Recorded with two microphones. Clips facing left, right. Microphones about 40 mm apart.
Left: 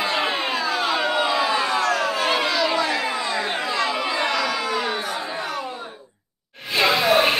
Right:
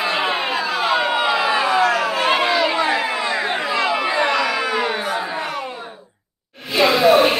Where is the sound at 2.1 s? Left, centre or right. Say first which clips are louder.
Right 4 dB; right.